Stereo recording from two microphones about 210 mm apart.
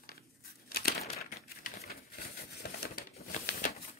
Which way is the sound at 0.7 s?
45° left (ahead or behind).